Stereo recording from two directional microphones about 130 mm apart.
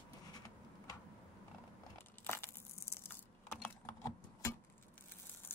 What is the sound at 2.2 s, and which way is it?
Crushing, 15° left (ahead or behind).